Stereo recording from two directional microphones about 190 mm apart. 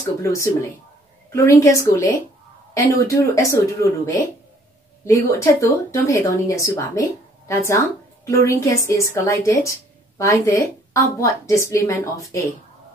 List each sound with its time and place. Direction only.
0.2 s speech: 15° left (ahead or behind)